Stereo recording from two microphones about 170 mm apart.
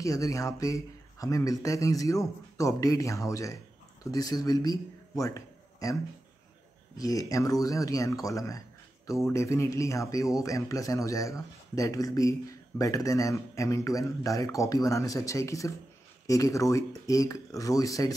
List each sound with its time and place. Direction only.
0.0 s speech: 20° left (ahead or behind)
7.0 s speech: 20° left (ahead or behind)